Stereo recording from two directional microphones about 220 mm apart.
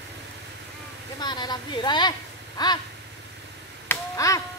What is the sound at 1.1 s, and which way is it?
A woman's voice, 20° left (ahead or behind).